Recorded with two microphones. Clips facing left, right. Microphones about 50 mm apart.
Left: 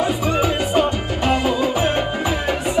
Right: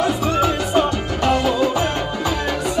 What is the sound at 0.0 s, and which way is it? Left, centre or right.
Music, left.